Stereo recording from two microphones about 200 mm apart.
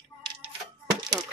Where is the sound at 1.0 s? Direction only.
20° right (ahead or behind).